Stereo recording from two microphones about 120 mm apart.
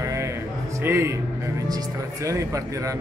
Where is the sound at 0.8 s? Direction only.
20° right (ahead or behind).